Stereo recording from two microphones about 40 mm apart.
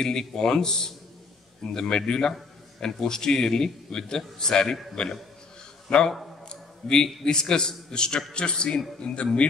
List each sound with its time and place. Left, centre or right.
0.0 s a man's voice: centre; by 9.5 s left